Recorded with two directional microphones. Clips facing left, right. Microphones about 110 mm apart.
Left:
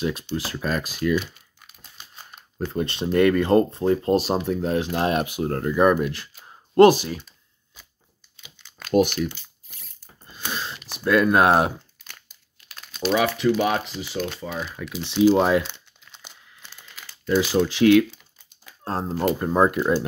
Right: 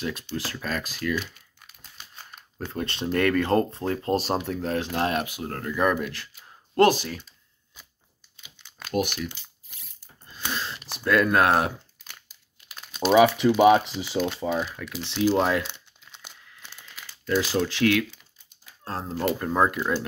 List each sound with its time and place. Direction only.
0.0 s speech: 15° left (ahead or behind)
1.8 s crumpling: centre (ahead or behind)
2.3 s speech: 5° left (ahead or behind)
6.4 s a sound: 20° left (ahead or behind)
10.3 s a sound: 10° left (ahead or behind)
12.6 s speech: 15° right (ahead or behind)
15.0 s speech: 10° left (ahead or behind)
15.6 s crumpling: 5° right (ahead or behind)
17.0 s speech: 5° left (ahead or behind)
18.9 s speech: 25° left (ahead or behind)